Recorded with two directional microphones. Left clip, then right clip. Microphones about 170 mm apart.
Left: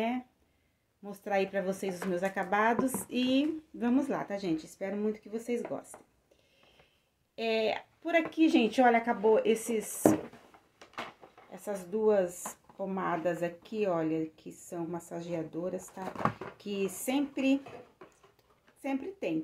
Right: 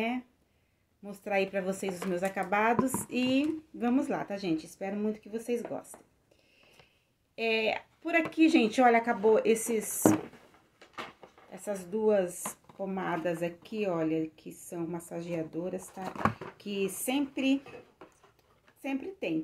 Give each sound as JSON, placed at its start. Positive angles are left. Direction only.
{"t": 1.0, "sound": "speech", "side_deg": 0}
{"t": 2.8, "sound": "speech", "side_deg": -50}
{"t": 3.3, "sound": "speech", "side_deg": 0}
{"t": 5.9, "sound": "speech", "side_deg": -25}
{"t": 7.3, "sound": "speech", "side_deg": -5}
{"t": 11.5, "sound": "speech", "side_deg": -5}